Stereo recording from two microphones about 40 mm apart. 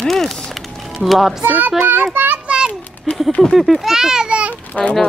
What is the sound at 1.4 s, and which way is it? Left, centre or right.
Speech, right.